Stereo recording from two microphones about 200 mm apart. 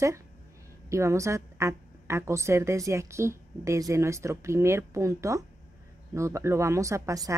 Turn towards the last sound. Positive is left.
turn(degrees=-15)  # may be behind; listen again after turning